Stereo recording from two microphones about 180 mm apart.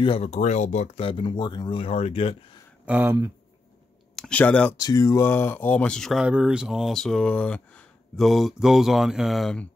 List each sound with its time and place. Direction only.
0.0 s speech: 35° left (ahead or behind)
2.8 s speech: 10° right (ahead or behind)
4.1 s speech: 5° left (ahead or behind)
4.7 s speech: 20° left (ahead or behind); by 9.7 s centre (ahead or behind)